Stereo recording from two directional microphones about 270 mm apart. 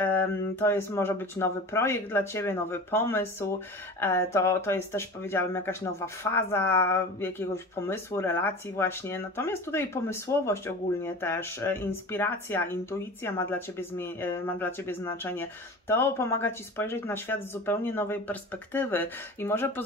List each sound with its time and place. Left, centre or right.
0.6 s speech: centre